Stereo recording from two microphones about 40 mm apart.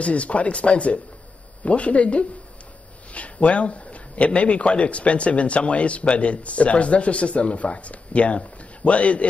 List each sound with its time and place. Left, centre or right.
0.0 s a man's voice: left